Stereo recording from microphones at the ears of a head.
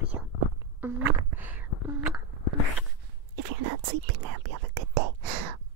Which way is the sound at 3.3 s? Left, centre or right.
Right.